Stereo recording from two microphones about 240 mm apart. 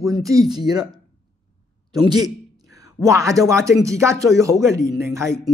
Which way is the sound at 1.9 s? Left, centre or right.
Centre.